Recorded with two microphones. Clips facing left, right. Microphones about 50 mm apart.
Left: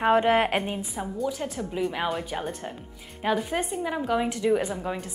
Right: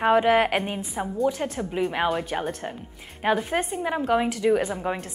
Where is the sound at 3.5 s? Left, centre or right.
Right.